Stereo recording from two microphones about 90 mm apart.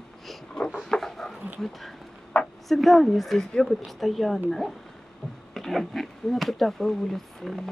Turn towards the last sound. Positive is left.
turn(degrees=0)  # may be behind; listen again after turning